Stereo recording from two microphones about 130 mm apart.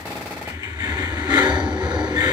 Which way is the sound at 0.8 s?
35° right (ahead or behind).